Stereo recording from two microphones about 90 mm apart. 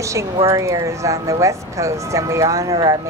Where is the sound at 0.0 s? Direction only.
35° right (ahead or behind).